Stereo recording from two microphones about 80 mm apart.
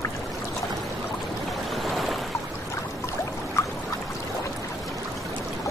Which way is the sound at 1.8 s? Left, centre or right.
Centre.